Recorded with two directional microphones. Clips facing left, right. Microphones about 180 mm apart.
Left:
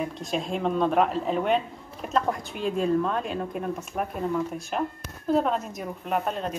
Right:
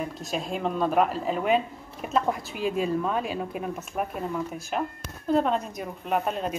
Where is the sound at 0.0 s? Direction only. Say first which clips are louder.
Left 2 dB; centre (ahead or behind).